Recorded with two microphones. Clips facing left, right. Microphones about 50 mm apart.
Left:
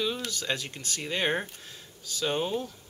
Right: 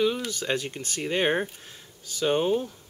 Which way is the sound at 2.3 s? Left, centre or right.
Right.